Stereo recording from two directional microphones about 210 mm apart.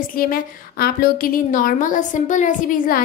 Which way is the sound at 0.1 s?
45° left (ahead or behind).